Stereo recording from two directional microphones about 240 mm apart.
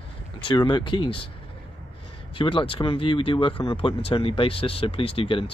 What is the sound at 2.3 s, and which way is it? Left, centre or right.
Speech, left.